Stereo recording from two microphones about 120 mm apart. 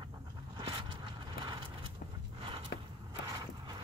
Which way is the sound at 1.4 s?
40° right (ahead or behind).